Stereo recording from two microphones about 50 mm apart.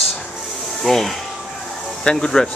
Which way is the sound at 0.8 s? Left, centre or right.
Centre.